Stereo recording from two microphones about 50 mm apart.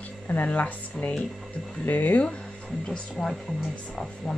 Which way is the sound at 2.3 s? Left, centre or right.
Centre.